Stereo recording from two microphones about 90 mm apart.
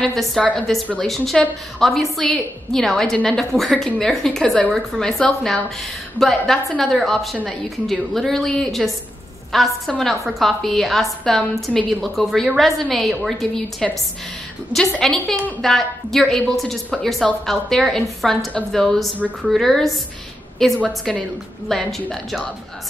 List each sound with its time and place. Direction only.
0.1 s a woman's voice: centre (ahead or behind)
15.0 s a woman's voice: 5° left (ahead or behind)
19.1 s speech: 20° right (ahead or behind)
19.5 s a woman's voice: centre (ahead or behind)